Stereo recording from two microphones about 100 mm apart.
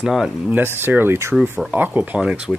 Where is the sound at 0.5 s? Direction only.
20° right (ahead or behind).